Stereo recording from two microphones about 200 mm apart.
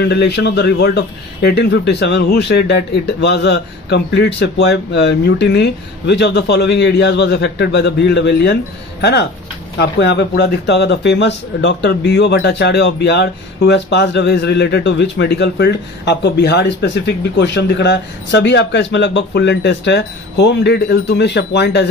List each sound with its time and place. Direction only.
0.0 s a man's voice: 55° left (ahead or behind)